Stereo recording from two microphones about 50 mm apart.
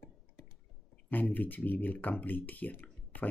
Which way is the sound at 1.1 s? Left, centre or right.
Left.